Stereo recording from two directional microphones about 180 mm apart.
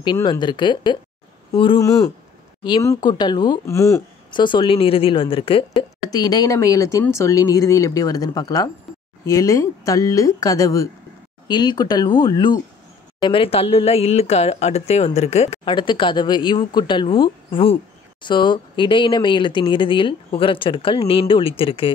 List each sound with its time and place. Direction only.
0.0 s speech: 25° left (ahead or behind)